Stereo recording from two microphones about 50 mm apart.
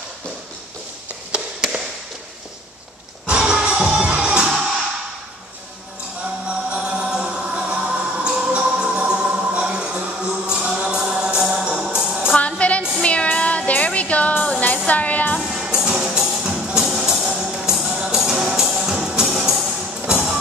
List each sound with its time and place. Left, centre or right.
3.3 s music: centre
6.7 s choir: centre
7.5 s music: centre
8.0 s choir: centre
8.5 s music: centre
12.4 s a sound: left
13.0 s music: left
15.5 s music: centre